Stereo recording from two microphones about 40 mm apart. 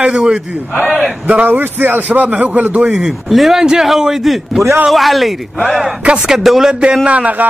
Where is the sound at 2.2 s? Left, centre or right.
Right.